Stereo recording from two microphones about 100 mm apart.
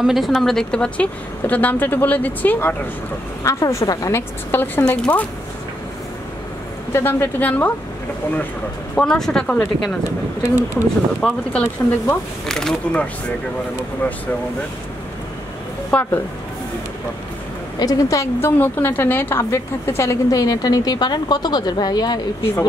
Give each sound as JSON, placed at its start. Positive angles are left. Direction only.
{"t": 0.0, "sound": "speech", "side_deg": 0}
{"t": 3.4, "sound": "a woman's voice", "side_deg": 30}
{"t": 4.5, "sound": "a woman's voice", "side_deg": 20}
{"t": 6.9, "sound": "a woman's voice", "side_deg": 25}
{"t": 8.9, "sound": "speech", "side_deg": 5}
{"t": 10.0, "sound": "speech", "side_deg": -20}
{"t": 11.2, "sound": "speech", "side_deg": 5}
{"t": 12.4, "sound": "speech", "side_deg": 5}
{"t": 15.9, "sound": "speech", "side_deg": 10}
{"t": 17.7, "sound": "a woman's voice", "side_deg": 35}
{"t": 18.6, "sound": "a woman's voice", "side_deg": 20}